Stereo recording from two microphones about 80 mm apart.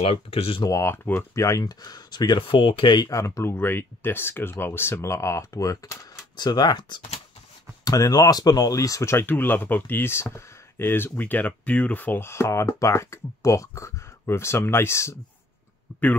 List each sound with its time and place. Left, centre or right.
0.7 s speech: left
3.0 s speech: left
6.3 s speech: left
7.8 s speech: left
12.3 s speech: left